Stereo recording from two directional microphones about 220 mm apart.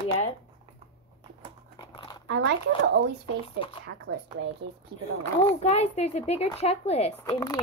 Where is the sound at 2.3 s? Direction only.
50° right (ahead or behind).